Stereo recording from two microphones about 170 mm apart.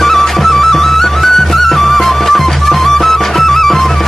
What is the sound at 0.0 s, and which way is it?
Music, centre (ahead or behind).